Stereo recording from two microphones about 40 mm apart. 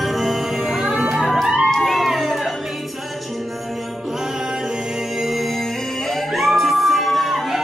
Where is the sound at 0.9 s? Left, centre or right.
Right.